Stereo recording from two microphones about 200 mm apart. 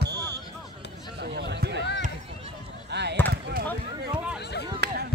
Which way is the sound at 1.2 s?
55° right (ahead or behind).